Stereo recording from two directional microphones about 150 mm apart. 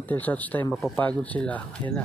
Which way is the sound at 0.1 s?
10° left (ahead or behind).